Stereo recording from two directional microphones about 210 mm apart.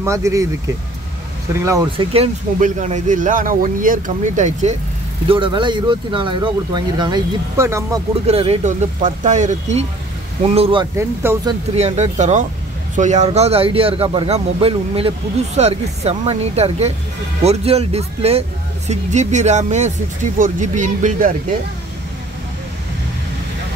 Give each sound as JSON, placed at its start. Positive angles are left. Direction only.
{"t": 0.0, "sound": "speech", "side_deg": -15}
{"t": 1.5, "sound": "speech", "side_deg": -15}
{"t": 2.6, "sound": "speech", "side_deg": -35}
{"t": 5.3, "sound": "speech", "side_deg": -25}
{"t": 8.3, "sound": "speech", "side_deg": -30}
{"t": 11.0, "sound": "speech", "side_deg": -10}
{"t": 11.7, "sound": "speech", "side_deg": -30}